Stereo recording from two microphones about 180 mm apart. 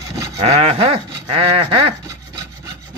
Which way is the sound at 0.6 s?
30° right (ahead or behind).